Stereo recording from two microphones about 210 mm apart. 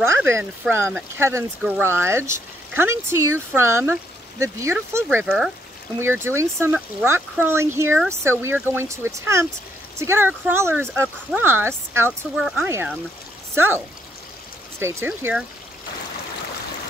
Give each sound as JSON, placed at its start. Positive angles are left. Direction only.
{"t": 0.0, "sound": "speech", "side_deg": -10}
{"t": 12.4, "sound": "speech", "side_deg": 0}
{"t": 12.6, "sound": "speech", "side_deg": -10}